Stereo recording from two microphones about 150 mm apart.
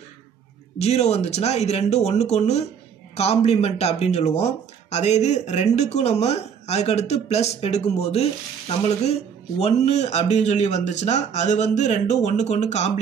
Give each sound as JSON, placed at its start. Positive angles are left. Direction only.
{"t": 0.7, "sound": "speech", "side_deg": 45}